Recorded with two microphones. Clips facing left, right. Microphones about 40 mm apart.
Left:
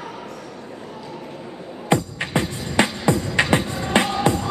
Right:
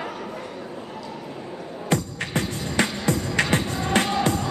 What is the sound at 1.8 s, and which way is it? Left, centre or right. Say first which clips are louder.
Music: left 4 dB; left.